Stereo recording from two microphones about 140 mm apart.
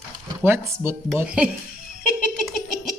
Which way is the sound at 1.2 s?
10° right (ahead or behind).